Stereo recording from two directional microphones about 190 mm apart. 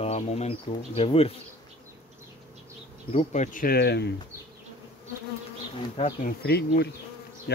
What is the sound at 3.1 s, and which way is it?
Speech, 35° left (ahead or behind).